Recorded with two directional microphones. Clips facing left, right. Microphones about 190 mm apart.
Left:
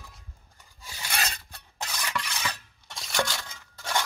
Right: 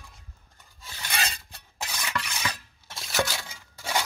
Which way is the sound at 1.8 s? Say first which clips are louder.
Even; 10° right (ahead or behind).